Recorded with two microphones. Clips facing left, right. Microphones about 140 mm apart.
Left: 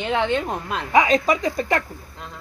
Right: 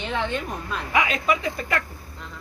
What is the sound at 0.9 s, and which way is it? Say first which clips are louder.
Speech: left 6 dB; 35° left (ahead or behind).